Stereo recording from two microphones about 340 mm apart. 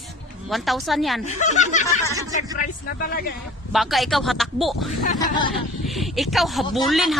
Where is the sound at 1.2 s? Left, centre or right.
Left.